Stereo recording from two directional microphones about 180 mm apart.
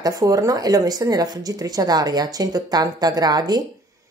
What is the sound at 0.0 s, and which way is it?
Speech, 20° right (ahead or behind).